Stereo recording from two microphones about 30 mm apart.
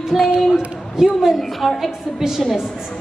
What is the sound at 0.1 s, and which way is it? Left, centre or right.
Speech, centre.